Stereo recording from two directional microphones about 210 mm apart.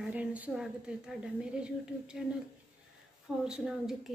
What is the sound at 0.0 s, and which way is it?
A woman's voice, 5° right (ahead or behind).